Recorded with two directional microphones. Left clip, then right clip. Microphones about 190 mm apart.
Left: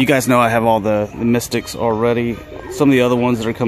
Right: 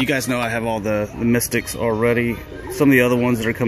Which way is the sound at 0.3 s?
35° left (ahead or behind).